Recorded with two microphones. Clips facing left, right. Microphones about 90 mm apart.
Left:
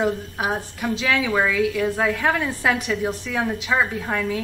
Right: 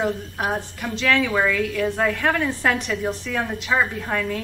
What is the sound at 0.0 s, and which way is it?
A woman's voice, 5° left (ahead or behind).